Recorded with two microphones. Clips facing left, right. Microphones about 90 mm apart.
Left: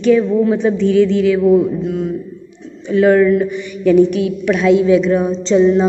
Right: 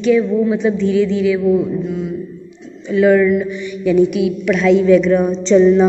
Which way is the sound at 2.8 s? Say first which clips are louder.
Left 1 dB; 40° left (ahead or behind).